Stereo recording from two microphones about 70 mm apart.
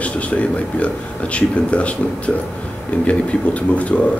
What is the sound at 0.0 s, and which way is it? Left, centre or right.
Speech, centre.